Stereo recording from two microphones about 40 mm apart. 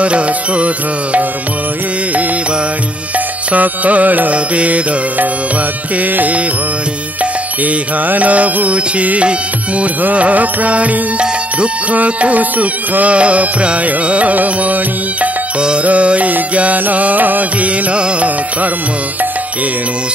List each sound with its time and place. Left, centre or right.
0.0 s music: right
3.5 s music: right
7.6 s music: right
15.8 s music: right